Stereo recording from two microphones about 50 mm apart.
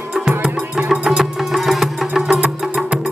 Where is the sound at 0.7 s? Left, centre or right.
Centre.